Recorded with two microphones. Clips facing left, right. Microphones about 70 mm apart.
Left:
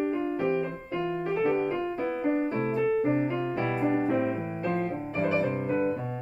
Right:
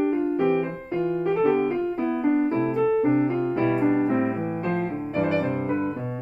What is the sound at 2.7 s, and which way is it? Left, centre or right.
Piano, right.